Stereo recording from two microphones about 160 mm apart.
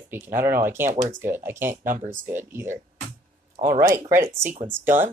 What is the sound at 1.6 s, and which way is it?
Speech, 55° right (ahead or behind).